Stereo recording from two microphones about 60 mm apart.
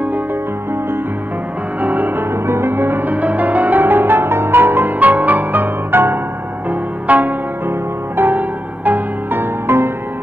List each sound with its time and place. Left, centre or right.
1.8 s music: right